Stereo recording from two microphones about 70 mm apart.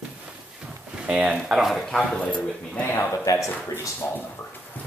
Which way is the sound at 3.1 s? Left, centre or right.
Left.